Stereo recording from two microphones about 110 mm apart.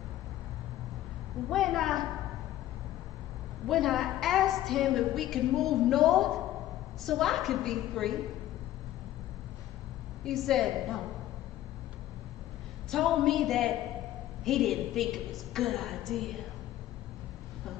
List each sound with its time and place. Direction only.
1.5 s a woman's voice: centre (ahead or behind)
3.6 s a woman's voice: centre (ahead or behind)
10.2 s a woman's voice: centre (ahead or behind)
12.9 s a woman's voice: centre (ahead or behind)